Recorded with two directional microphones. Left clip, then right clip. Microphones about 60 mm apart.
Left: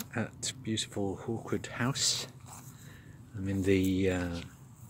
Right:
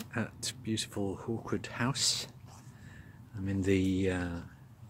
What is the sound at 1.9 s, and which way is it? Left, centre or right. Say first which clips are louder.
Speech: left 1 dB; left.